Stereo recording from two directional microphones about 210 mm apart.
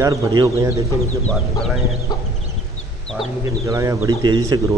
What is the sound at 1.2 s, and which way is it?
Speech, centre (ahead or behind).